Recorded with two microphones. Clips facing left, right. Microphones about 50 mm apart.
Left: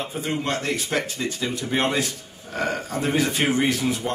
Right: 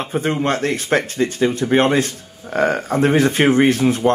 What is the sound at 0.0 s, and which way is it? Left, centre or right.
Speech, right.